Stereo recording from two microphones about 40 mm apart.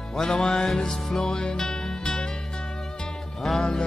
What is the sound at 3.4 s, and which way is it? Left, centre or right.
Music, centre.